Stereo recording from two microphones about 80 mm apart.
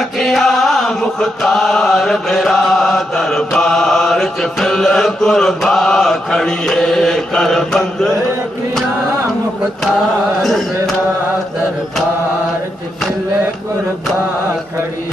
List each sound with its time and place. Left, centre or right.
0.2 s chant: centre
10.4 s carnatic music: centre